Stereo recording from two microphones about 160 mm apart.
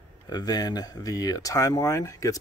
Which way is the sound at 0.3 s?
25° left (ahead or behind).